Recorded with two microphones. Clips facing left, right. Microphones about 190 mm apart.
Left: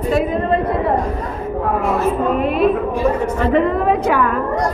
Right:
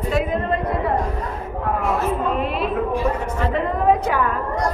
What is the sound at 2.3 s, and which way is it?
Speech, 50° left (ahead or behind).